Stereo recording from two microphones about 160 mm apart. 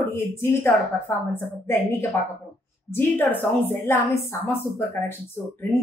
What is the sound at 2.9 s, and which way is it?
A woman's voice, 15° left (ahead or behind).